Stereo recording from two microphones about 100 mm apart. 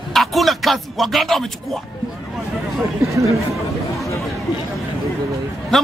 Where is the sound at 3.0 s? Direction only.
30° right (ahead or behind).